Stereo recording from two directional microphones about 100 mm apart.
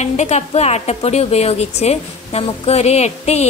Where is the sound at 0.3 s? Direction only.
90° left.